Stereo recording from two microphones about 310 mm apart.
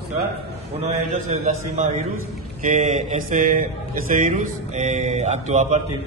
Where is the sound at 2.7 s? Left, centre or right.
Right.